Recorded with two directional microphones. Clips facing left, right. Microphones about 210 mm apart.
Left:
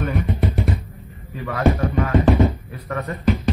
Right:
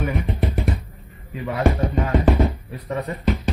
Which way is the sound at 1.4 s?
15° right (ahead or behind).